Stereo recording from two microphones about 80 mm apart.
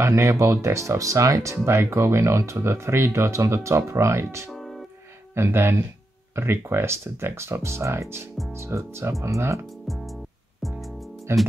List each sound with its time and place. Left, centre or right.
0.0 s speech: right
4.5 s music: centre
5.3 s speech: right
10.6 s music: centre
11.3 s speech: right